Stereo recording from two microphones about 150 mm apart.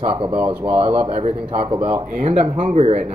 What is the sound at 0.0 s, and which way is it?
Speech, 35° right (ahead or behind).